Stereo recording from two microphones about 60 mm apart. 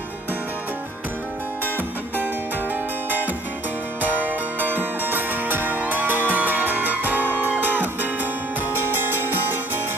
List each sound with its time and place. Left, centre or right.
2.7 s music: right